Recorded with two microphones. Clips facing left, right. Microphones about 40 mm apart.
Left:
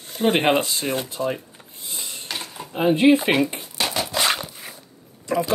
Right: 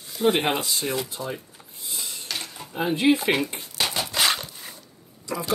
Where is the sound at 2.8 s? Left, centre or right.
Left.